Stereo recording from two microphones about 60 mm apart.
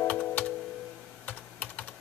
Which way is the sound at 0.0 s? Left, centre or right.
Left.